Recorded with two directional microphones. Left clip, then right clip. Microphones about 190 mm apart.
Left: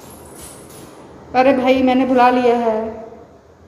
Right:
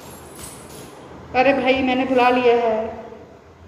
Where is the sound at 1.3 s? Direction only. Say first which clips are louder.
Left 3 dB; 30° left (ahead or behind).